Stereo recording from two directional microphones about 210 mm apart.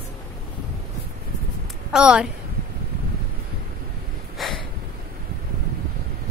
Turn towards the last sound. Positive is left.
turn(degrees=0)  # may be behind; listen again after turning